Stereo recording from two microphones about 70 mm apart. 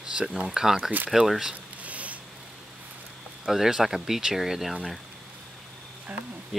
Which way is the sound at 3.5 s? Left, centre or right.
Centre.